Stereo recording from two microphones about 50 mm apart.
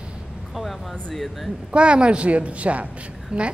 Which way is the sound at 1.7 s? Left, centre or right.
Right.